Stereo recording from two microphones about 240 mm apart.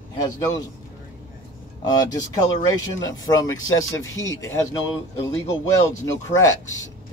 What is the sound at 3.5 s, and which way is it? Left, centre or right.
Speech, left.